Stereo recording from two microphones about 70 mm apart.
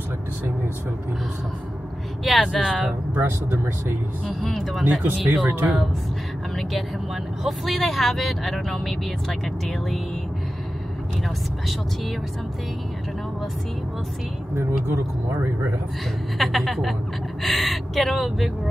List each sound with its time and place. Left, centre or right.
2.2 s speech: centre
3.2 s speech: right
4.3 s speech: centre
4.8 s speech: right
7.4 s speech: centre
14.6 s speech: right
16.3 s speech: centre